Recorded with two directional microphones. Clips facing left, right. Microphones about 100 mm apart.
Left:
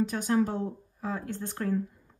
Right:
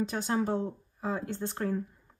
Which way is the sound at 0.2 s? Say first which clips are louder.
Left 2 dB; 20° right (ahead or behind).